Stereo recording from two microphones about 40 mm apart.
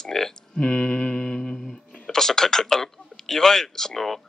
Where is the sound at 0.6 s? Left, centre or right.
Left.